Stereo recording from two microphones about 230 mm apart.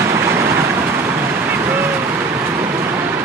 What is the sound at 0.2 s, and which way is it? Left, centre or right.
Vehicle, centre.